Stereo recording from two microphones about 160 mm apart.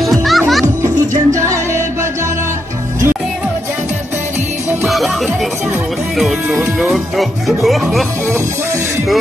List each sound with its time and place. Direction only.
0.0 s music: centre (ahead or behind)
0.8 s music: 20° right (ahead or behind)
4.8 s music: centre (ahead or behind)
6.1 s speech: centre (ahead or behind)